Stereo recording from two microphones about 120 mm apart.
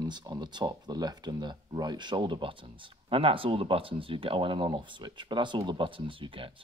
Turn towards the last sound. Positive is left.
turn(degrees=-45)  # may be behind; listen again after turning